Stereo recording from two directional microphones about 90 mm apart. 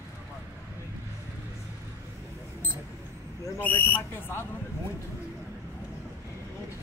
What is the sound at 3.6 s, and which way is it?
Speech, 20° left (ahead or behind).